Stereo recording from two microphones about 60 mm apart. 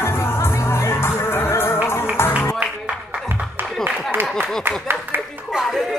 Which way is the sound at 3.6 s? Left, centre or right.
Right.